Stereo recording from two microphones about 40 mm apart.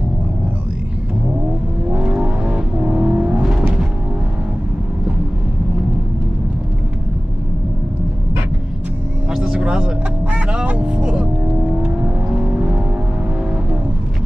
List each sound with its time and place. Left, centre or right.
2.0 s vehicle: right
9.3 s vehicle: centre